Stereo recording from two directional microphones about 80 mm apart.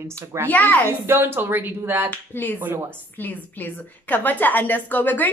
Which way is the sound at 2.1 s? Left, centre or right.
Left.